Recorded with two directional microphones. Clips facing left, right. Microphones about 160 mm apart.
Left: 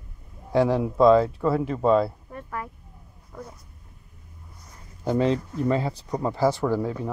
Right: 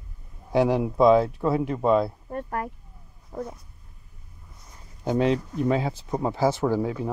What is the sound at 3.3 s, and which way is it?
Speech, 30° right (ahead or behind).